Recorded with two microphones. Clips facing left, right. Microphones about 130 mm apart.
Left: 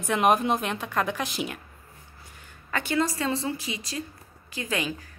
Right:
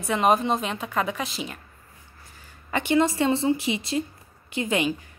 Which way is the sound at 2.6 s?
20° right (ahead or behind).